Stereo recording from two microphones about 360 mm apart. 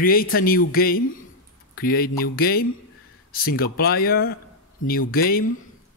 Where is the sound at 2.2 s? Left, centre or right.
Left.